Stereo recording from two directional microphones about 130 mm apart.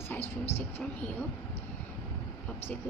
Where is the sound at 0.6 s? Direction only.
20° left (ahead or behind).